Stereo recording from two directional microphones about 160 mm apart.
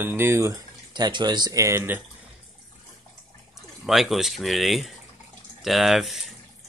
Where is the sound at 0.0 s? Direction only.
15° right (ahead or behind).